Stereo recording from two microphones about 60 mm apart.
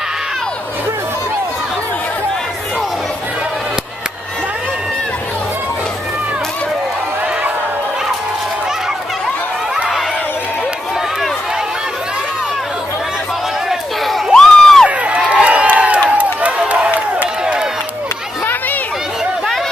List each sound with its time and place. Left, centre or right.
13.7 s crowd: centre
14.9 s crowd: centre
16.2 s run: right